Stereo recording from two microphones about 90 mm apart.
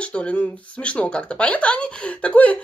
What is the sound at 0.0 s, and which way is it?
A woman's voice, 15° left (ahead or behind).